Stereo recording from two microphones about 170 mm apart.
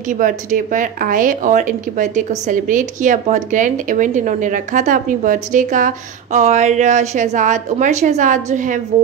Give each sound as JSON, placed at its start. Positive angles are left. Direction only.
{"t": 0.2, "sound": "speech", "side_deg": -50}